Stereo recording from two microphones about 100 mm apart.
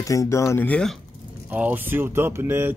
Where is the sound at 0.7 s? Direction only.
5° left (ahead or behind).